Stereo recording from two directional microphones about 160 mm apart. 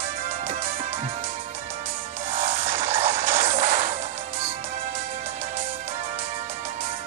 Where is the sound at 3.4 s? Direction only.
45° right (ahead or behind).